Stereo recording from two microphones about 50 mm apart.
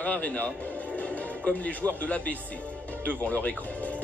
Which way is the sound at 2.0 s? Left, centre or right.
Left.